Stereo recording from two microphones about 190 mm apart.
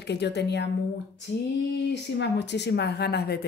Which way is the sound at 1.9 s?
65° left (ahead or behind).